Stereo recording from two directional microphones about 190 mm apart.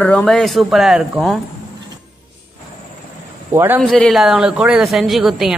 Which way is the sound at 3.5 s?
10° right (ahead or behind).